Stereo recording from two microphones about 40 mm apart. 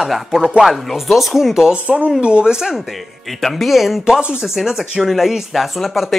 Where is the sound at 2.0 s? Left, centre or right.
Right.